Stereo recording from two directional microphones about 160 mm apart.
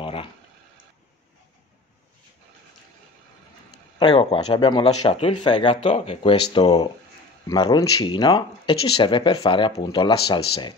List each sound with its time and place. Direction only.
0.0 s a sound: 35° left (ahead or behind)
4.0 s speech: 35° left (ahead or behind)
7.4 s speech: 25° left (ahead or behind)